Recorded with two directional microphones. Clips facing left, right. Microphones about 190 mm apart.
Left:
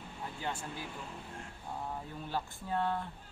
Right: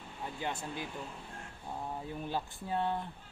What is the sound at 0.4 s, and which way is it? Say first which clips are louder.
Speech: right 2 dB; 20° right (ahead or behind).